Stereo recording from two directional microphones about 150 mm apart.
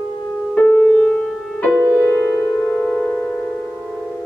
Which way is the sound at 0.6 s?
10° left (ahead or behind).